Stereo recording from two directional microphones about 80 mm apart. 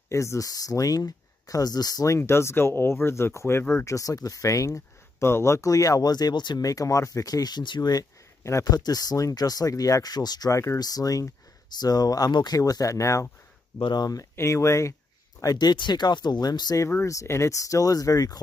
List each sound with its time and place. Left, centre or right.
0.1 s speech: left
2.0 s speech: left
6.6 s speech: left
10.5 s speech: left
10.8 s speech: left
13.7 s speech: left
14.3 s speech: left
15.4 s speech: left
16.9 s speech: left